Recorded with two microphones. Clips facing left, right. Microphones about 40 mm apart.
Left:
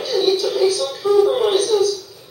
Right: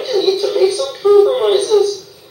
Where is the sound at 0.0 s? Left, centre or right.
Centre.